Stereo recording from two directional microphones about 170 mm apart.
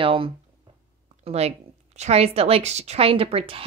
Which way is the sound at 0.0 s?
30° right (ahead or behind).